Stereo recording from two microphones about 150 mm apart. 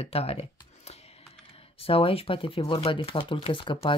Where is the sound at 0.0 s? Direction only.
40° left (ahead or behind).